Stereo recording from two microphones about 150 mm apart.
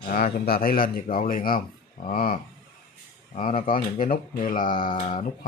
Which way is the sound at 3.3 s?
60° left (ahead or behind).